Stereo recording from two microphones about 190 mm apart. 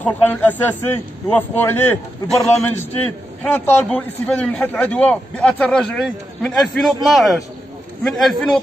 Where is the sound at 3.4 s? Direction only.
5° left (ahead or behind).